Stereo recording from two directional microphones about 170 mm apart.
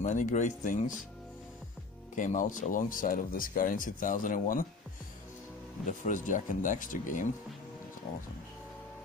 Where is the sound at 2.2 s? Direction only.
50° left (ahead or behind).